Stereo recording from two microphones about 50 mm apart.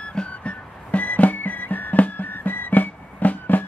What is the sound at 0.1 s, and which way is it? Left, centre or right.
Music, centre.